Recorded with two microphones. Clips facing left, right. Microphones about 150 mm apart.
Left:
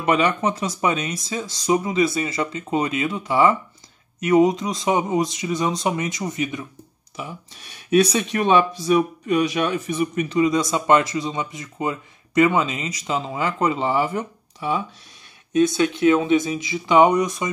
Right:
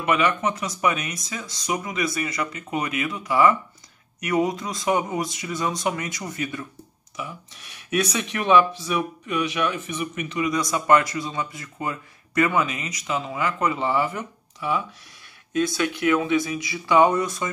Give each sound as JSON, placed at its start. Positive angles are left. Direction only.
{"t": 0.0, "sound": "speech", "side_deg": 30}